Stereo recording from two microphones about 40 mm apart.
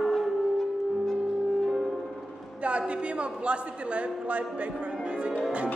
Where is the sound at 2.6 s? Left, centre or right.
Right.